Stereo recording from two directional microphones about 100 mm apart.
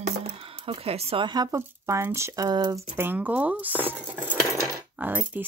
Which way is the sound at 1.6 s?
25° right (ahead or behind).